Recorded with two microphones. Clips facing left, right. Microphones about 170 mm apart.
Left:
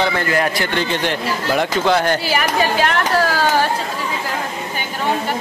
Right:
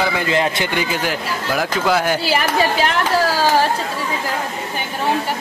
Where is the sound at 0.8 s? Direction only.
5° right (ahead or behind).